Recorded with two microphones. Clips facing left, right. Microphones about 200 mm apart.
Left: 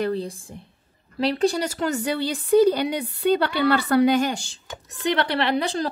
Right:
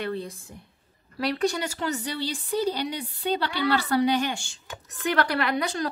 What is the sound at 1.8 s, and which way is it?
A woman's voice, 50° left (ahead or behind).